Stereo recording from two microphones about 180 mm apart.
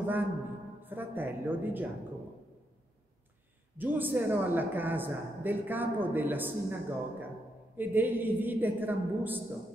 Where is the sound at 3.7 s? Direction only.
10° right (ahead or behind).